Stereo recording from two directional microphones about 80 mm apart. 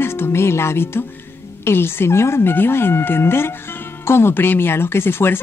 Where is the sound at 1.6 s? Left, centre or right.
Left.